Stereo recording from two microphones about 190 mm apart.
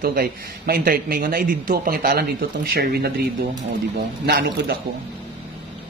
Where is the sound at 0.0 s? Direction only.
50° right (ahead or behind).